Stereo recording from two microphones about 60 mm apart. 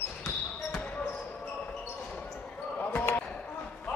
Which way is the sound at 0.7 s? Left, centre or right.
Left.